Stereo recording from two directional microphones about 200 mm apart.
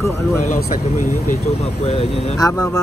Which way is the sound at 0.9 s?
40° left (ahead or behind).